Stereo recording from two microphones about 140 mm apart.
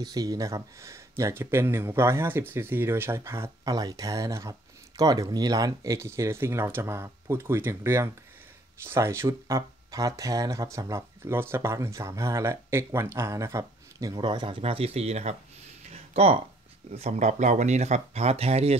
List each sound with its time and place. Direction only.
0.0 s speech: 25° right (ahead or behind); by 15.3 s 50° right (ahead or behind)
15.8 s a sound: 50° right (ahead or behind)
16.9 s speech: 55° right (ahead or behind)